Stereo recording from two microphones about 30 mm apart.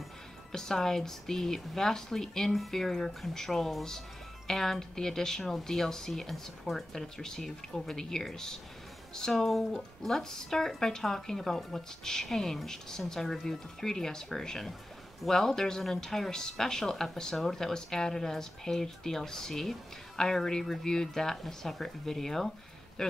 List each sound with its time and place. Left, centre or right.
0.5 s speech: centre